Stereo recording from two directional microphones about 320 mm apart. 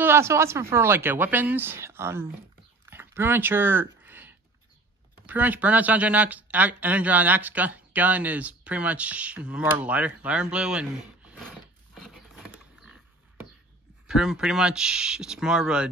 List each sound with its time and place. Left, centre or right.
0.0 s speech: centre
2.9 s a sound: centre
5.2 s speech: centre
11.9 s patter: centre
14.0 s speech: centre